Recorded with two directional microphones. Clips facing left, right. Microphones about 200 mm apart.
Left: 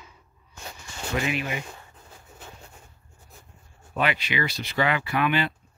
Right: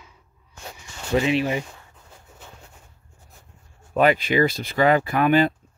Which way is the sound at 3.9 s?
45° right (ahead or behind).